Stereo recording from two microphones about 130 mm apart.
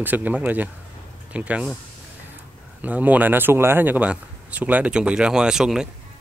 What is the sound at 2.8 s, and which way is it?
Speech, 10° right (ahead or behind).